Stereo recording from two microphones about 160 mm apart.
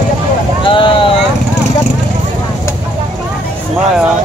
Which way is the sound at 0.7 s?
30° left (ahead or behind).